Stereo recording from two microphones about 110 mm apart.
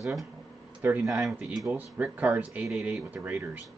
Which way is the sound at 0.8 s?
20° right (ahead or behind).